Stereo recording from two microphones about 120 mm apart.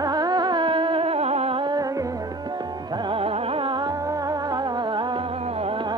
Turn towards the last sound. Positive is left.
turn(degrees=-55)  # may be behind; listen again after turning